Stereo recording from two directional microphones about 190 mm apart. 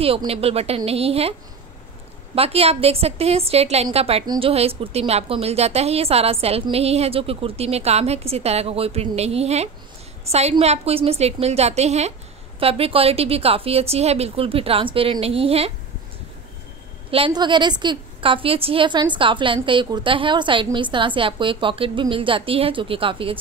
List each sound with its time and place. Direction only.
0.0 s a woman's voice: 30° right (ahead or behind)
2.3 s a woman's voice: 30° right (ahead or behind)
17.1 s a woman's voice: 25° right (ahead or behind)